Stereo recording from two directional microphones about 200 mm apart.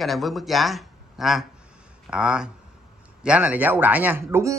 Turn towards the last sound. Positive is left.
turn(degrees=-10)  # may be behind; listen again after turning